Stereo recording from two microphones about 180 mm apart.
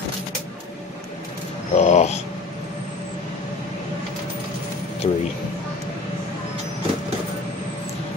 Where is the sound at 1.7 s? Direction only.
40° left (ahead or behind).